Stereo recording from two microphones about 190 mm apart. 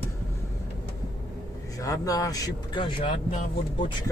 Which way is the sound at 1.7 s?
20° left (ahead or behind).